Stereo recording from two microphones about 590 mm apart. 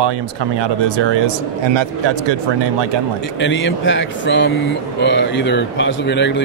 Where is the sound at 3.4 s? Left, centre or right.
Centre.